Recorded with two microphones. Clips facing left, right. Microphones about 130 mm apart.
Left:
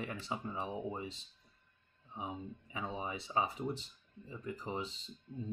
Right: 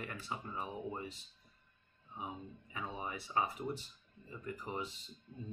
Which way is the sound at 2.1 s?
20° left (ahead or behind).